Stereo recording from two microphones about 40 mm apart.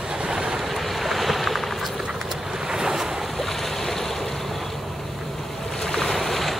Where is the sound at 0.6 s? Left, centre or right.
Centre.